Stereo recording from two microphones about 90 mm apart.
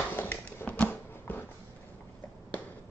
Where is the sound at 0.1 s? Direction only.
20° left (ahead or behind).